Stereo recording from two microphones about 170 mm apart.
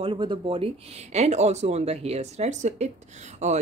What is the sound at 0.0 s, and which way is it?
Speech, 30° right (ahead or behind).